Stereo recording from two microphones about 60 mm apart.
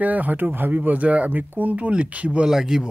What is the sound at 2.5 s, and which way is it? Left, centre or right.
Speech, centre.